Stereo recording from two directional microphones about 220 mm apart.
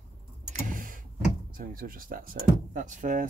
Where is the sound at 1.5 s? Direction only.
40° right (ahead or behind).